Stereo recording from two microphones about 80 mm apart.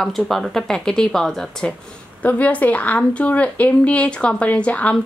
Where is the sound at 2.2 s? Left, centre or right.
Centre.